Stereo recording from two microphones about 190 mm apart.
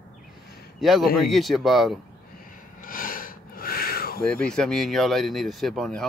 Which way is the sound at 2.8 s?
45° left (ahead or behind).